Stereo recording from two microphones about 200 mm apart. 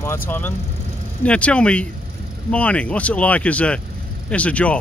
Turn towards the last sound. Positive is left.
turn(degrees=5)  # may be behind; listen again after turning